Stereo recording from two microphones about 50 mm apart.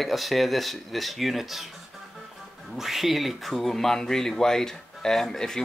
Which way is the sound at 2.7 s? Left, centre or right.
Centre.